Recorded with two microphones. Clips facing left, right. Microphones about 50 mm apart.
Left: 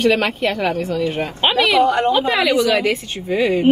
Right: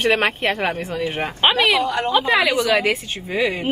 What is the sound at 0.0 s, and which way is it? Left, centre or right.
A woman's voice, right.